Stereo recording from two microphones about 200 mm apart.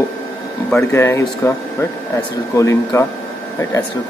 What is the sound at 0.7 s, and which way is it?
Speech, 10° left (ahead or behind).